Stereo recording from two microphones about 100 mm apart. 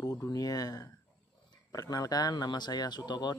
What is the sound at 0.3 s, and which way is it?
Speech, 40° left (ahead or behind).